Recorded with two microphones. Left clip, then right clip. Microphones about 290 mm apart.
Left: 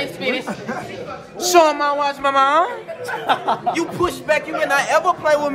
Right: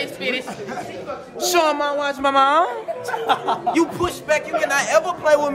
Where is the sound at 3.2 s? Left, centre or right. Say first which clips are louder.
Left 2 dB; left.